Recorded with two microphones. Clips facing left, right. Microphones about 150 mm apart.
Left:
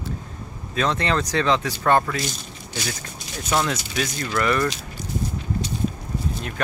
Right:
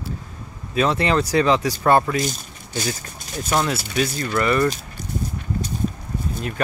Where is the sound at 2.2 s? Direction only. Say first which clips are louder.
Right 4 dB; 45° right (ahead or behind).